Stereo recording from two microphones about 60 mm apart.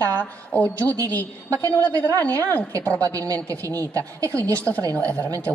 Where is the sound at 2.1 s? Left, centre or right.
Right.